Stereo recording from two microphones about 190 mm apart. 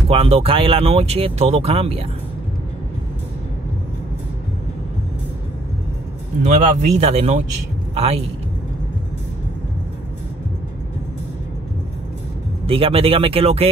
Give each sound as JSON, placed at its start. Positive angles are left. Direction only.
{"t": 0.1, "sound": "speech", "side_deg": -30}
{"t": 6.4, "sound": "speech", "side_deg": -40}
{"t": 12.6, "sound": "speech", "side_deg": -30}